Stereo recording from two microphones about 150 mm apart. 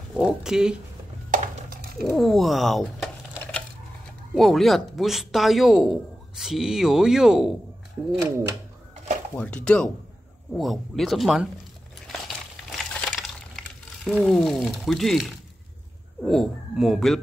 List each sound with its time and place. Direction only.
0.1 s speech: 5° right (ahead or behind)
1.3 s a sound: 90° right
2.1 s a man's voice: centre (ahead or behind)
4.4 s a man's voice: centre (ahead or behind)
9.4 s a man's voice: 10° left (ahead or behind)
12.7 s a sound: 5° left (ahead or behind)
16.2 s a man's voice: centre (ahead or behind)